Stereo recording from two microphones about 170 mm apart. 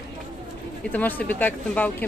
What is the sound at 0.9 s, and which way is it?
Speech, 10° left (ahead or behind).